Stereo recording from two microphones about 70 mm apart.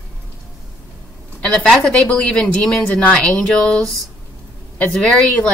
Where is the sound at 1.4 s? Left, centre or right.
Centre.